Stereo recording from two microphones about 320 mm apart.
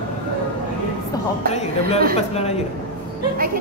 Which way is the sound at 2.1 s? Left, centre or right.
Centre.